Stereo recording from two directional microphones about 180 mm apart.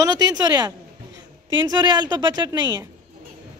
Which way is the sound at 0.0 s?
20° right (ahead or behind).